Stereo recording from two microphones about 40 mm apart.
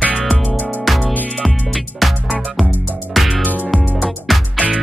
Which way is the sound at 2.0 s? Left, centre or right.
Centre.